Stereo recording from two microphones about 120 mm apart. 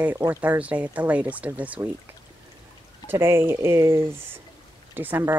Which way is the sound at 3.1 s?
20° right (ahead or behind).